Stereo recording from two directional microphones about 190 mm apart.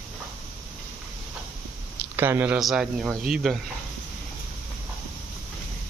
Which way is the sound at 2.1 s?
10° right (ahead or behind).